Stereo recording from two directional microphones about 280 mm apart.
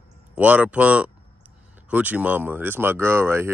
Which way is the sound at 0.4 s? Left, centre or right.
Centre.